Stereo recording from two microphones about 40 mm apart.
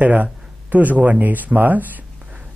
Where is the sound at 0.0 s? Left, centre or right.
Right.